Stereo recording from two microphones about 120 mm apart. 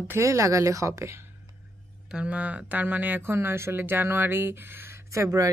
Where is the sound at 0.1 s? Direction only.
25° right (ahead or behind).